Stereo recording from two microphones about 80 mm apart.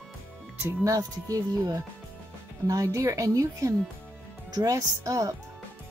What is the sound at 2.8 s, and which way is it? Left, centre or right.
A woman's voice, right.